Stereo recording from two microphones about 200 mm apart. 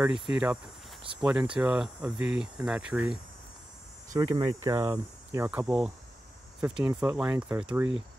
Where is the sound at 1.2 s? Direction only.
5° right (ahead or behind).